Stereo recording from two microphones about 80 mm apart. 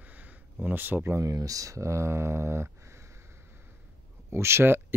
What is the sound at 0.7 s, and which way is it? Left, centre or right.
Speech, right.